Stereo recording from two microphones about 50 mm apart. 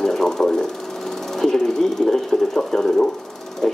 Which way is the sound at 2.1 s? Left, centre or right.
Centre.